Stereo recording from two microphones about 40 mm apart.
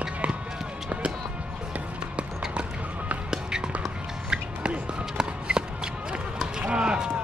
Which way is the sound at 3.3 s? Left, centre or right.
Right.